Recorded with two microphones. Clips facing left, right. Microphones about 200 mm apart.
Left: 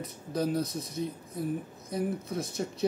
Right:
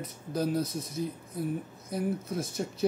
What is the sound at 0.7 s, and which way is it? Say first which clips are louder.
Speech: even; 25° right (ahead or behind).